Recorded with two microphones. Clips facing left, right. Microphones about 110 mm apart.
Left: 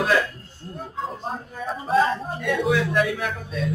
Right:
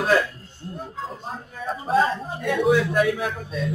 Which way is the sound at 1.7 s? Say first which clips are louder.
Even; centre (ahead or behind).